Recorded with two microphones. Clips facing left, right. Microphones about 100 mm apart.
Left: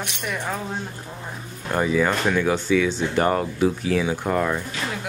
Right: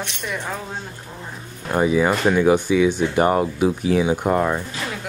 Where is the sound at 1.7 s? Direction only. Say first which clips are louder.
Right 3 dB; 15° right (ahead or behind).